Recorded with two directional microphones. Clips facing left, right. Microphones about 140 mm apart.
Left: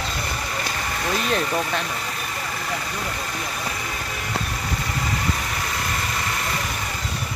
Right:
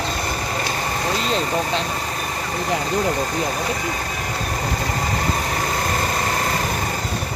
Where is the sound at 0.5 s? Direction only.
35° right (ahead or behind).